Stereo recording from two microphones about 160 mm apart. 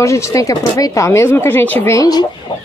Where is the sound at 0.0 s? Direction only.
20° left (ahead or behind).